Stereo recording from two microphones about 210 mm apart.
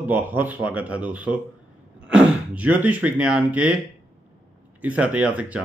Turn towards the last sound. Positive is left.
turn(degrees=-5)  # may be behind; listen again after turning